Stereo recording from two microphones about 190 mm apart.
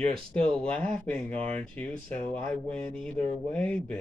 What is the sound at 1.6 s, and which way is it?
Speech, 5° left (ahead or behind).